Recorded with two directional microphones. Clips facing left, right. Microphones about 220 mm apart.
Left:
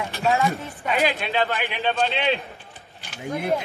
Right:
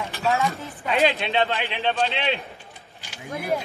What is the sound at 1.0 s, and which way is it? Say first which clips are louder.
Speech: right 3 dB; 25° right (ahead or behind).